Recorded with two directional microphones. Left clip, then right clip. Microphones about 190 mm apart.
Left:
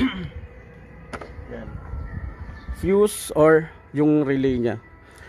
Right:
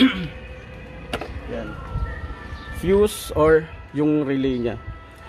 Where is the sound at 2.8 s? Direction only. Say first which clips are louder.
Right 1 dB; 50° left (ahead or behind).